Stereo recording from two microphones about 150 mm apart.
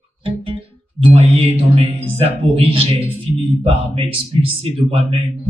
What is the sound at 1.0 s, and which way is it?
Speech, 40° right (ahead or behind).